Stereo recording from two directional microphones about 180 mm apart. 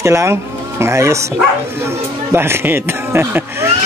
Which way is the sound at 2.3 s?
15° right (ahead or behind).